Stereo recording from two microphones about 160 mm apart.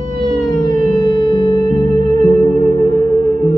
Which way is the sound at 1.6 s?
25° left (ahead or behind).